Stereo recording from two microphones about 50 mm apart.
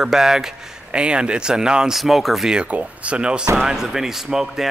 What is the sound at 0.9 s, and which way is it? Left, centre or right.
Speech, centre.